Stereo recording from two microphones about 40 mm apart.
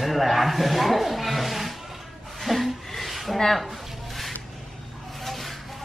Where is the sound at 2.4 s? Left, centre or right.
Centre.